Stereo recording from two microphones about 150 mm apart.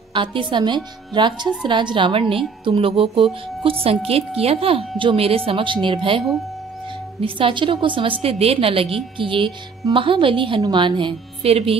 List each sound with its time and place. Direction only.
0.1 s speech: 35° right (ahead or behind)
4.4 s speech: 40° right (ahead or behind)